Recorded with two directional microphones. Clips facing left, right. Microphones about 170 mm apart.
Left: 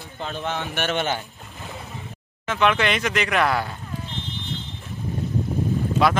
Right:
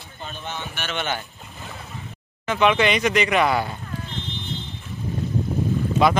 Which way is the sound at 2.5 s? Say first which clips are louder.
Right 2 dB; centre (ahead or behind).